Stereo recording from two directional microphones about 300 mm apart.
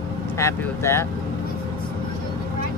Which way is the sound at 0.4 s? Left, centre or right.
Centre.